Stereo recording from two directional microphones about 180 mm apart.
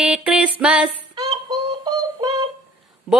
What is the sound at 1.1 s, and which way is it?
Synthetic singing, 20° right (ahead or behind).